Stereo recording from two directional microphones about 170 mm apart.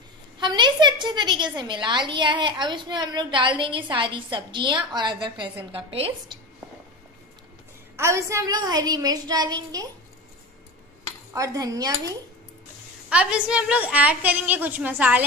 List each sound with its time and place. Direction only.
0.4 s a woman's voice: 25° right (ahead or behind)
7.9 s a woman's voice: 15° right (ahead or behind)
11.3 s a woman's voice: 20° right (ahead or behind)
13.1 s a woman's voice: 5° right (ahead or behind)